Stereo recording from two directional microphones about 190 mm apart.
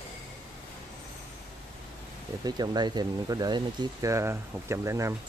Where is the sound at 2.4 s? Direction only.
20° right (ahead or behind).